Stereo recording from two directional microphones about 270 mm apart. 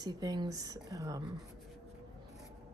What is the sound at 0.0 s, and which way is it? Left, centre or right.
Speech, centre.